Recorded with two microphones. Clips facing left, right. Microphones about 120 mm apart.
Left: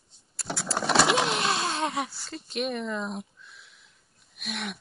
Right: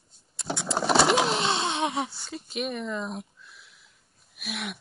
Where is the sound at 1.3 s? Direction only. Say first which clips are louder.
Right 1 dB; 25° right (ahead or behind).